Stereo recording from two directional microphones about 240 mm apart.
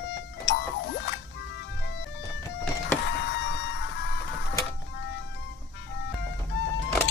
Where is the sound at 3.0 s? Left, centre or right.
Left.